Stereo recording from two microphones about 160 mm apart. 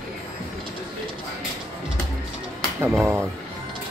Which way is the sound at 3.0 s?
15° right (ahead or behind).